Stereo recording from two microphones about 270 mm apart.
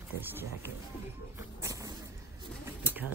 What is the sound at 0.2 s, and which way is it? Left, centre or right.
Speech, centre.